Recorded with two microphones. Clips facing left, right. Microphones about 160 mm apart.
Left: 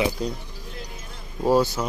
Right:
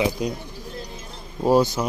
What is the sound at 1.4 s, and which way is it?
Speech, 15° right (ahead or behind).